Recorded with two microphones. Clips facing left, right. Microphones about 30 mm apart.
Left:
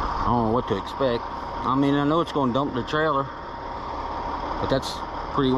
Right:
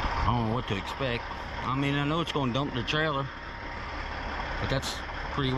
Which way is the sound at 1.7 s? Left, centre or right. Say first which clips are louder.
Left 8 dB; right.